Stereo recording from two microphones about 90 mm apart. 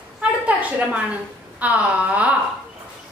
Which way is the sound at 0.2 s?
15° right (ahead or behind).